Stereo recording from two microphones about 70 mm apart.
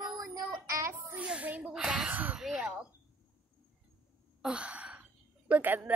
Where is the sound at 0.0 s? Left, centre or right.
Right.